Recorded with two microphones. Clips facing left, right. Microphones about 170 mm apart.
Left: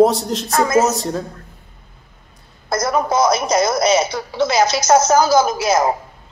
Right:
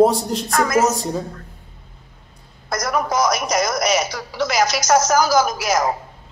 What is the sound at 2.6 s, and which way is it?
Speech, 25° left (ahead or behind).